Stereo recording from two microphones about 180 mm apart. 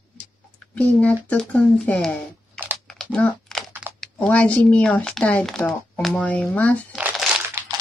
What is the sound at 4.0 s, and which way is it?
Speech, 5° left (ahead or behind).